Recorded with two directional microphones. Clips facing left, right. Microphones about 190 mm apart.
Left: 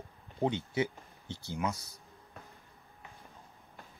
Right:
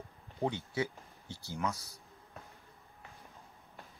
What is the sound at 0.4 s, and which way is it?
Speech, 20° left (ahead or behind).